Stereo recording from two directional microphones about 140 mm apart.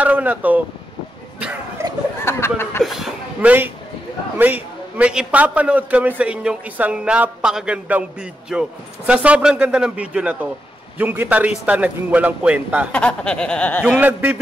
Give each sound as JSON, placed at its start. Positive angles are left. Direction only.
{"t": 0.0, "sound": "a sound", "side_deg": -10}
{"t": 2.2, "sound": "chuckle", "side_deg": 15}
{"t": 2.8, "sound": "chuckle", "side_deg": 0}
{"t": 4.4, "sound": "a man's voice", "side_deg": -10}
{"t": 12.9, "sound": "a sound", "side_deg": 10}
{"t": 13.8, "sound": "a man's voice", "side_deg": -10}